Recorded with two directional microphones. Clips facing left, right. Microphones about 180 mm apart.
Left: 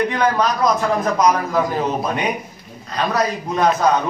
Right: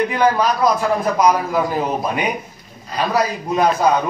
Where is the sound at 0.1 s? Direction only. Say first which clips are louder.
Right 2 dB; 5° right (ahead or behind).